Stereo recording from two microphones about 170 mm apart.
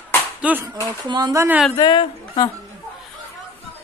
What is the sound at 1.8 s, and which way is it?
Speech, 25° left (ahead or behind).